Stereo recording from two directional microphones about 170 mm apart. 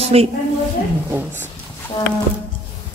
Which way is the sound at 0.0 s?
35° right (ahead or behind).